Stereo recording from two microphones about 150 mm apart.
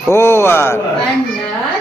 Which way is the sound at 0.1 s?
15° left (ahead or behind).